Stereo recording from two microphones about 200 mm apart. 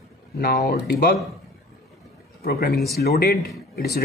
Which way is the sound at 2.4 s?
50° left (ahead or behind).